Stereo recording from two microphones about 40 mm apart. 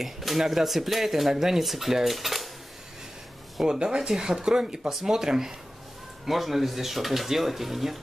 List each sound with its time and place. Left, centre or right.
0.0 s speech: centre
3.6 s speech: centre